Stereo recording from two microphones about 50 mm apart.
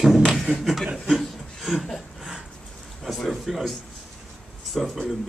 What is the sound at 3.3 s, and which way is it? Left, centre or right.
Speech, centre.